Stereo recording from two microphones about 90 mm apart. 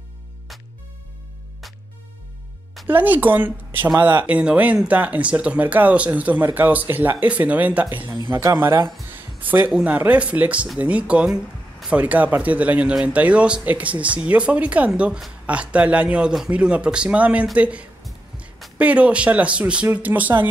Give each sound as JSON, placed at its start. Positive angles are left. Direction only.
{"t": 2.9, "sound": "speech", "side_deg": -20}
{"t": 9.1, "sound": "a sound", "side_deg": -20}
{"t": 9.8, "sound": "speech", "side_deg": -15}